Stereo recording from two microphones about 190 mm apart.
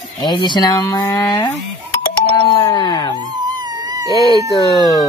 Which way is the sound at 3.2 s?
20° right (ahead or behind).